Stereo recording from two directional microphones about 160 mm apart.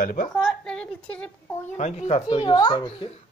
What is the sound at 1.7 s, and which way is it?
Speech, 45° left (ahead or behind).